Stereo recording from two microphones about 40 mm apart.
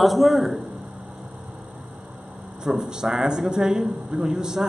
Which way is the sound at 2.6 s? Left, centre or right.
Centre.